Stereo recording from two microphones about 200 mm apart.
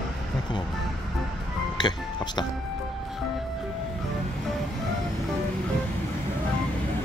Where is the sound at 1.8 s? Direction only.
20° left (ahead or behind).